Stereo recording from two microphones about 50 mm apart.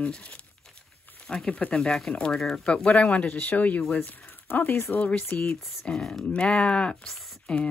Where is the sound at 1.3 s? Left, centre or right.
Left.